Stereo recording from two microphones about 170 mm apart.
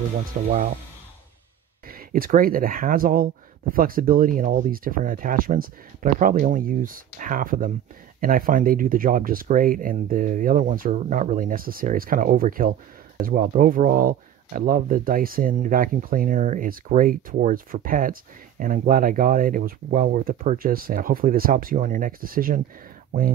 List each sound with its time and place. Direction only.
0.3 s speech: 55° right (ahead or behind)
1.9 s speech: 60° right (ahead or behind)